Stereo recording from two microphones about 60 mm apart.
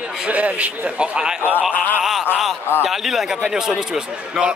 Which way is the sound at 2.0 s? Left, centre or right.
Centre.